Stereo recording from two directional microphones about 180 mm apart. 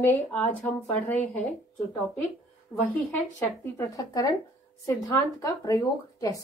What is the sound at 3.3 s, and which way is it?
Speech, 15° left (ahead or behind).